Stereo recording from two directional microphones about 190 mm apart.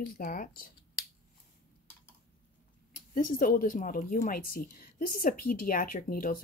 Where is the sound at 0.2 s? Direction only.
50° left (ahead or behind).